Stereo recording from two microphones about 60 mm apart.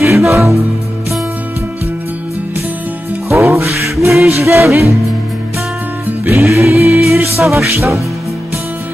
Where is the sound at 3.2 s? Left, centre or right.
Right.